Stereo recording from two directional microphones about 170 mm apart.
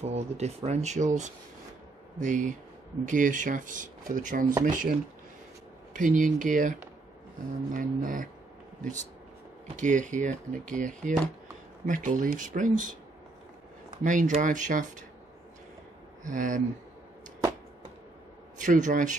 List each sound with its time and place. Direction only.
0.0 s speech: 40° right (ahead or behind)
5.9 s speech: 50° right (ahead or behind)
9.8 s speech: 45° right (ahead or behind)
16.3 s speech: 50° right (ahead or behind)
18.6 s speech: 45° right (ahead or behind)